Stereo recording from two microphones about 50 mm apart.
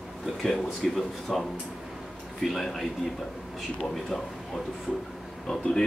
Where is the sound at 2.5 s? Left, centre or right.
Centre.